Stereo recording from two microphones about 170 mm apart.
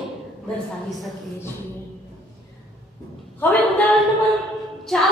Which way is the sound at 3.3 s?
10° left (ahead or behind).